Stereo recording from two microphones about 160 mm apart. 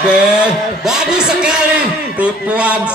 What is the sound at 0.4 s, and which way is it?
A man's voice, 5° right (ahead or behind).